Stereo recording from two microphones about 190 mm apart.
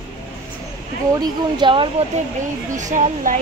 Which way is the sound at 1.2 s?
25° right (ahead or behind).